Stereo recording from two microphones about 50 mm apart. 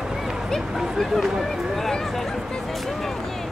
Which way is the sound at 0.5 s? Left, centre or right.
Centre.